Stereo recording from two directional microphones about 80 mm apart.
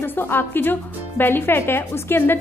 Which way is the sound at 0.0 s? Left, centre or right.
Left.